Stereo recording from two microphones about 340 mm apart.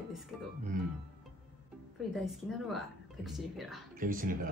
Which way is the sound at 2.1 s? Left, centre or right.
Centre.